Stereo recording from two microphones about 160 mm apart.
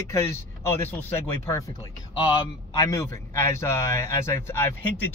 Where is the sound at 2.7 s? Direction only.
20° left (ahead or behind).